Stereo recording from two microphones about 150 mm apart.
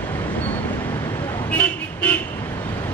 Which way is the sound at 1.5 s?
10° left (ahead or behind).